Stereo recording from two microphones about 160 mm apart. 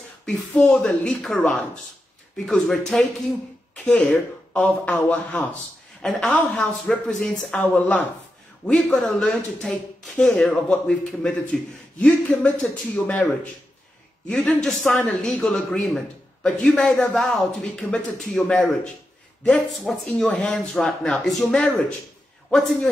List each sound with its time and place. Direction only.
0.5 s speech: 5° left (ahead or behind)